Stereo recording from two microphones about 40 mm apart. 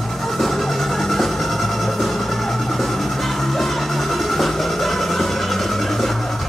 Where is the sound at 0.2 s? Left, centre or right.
Centre.